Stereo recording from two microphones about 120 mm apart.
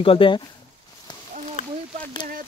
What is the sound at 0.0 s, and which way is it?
Speech, 50° left (ahead or behind).